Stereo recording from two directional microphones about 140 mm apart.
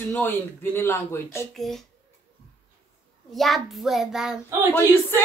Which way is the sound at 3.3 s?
Centre (ahead or behind).